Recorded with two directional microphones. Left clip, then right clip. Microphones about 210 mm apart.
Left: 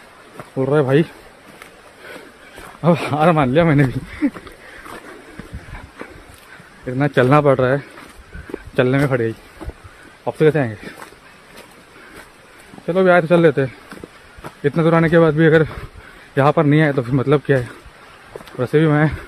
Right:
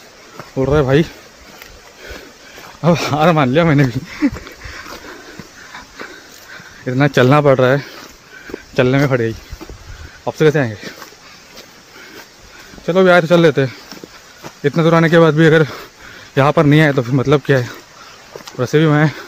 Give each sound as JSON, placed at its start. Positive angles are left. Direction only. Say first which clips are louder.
{"t": 0.6, "sound": "speech", "louder": "right 2 dB", "side_deg": -20}
{"t": 2.8, "sound": "speech", "louder": "right 2 dB", "side_deg": -15}
{"t": 6.9, "sound": "speech", "louder": "right 3 dB", "side_deg": -25}
{"t": 12.8, "sound": "speech", "louder": "right 3 dB", "side_deg": -25}
{"t": 17.0, "sound": "speech", "louder": "right 2 dB", "side_deg": -10}